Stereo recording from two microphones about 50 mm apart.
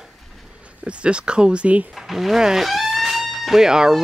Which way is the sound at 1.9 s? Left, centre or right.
Centre.